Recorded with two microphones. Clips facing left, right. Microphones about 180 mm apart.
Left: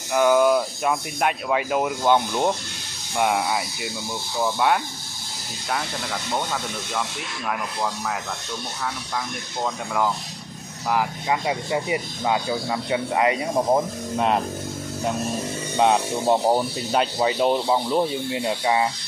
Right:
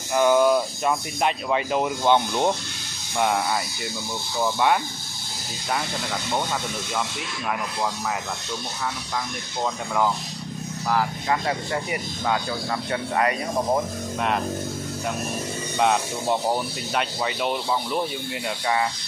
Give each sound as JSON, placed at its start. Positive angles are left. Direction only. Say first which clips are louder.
{"t": 0.1, "sound": "speech", "louder": "left 1 dB", "side_deg": 5}
{"t": 10.9, "sound": "speech", "louder": "left 1 dB", "side_deg": 10}
{"t": 15.8, "sound": "speech", "louder": "left 3 dB", "side_deg": 30}